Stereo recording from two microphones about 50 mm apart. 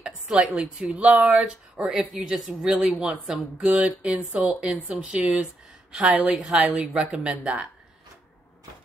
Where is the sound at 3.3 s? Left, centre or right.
Right.